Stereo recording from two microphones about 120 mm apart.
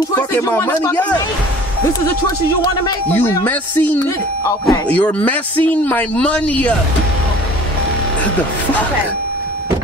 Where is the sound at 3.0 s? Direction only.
15° left (ahead or behind).